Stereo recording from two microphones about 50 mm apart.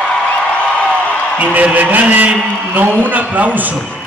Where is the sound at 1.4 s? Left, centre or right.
Right.